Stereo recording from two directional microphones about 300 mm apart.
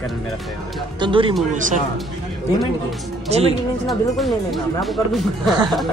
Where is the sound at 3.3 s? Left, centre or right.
Right.